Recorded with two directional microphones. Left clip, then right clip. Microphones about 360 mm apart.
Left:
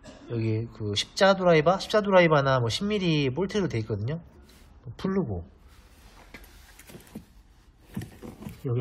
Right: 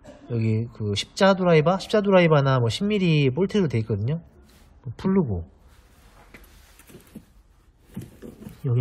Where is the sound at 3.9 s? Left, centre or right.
Right.